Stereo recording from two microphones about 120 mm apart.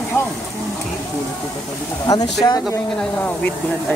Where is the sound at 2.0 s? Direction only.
35° left (ahead or behind).